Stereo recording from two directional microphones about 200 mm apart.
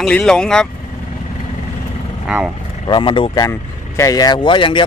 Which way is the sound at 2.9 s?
25° left (ahead or behind).